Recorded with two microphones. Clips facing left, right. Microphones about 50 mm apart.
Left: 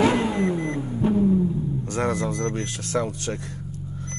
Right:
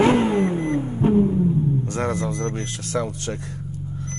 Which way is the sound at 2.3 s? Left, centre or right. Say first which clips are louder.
Even; right.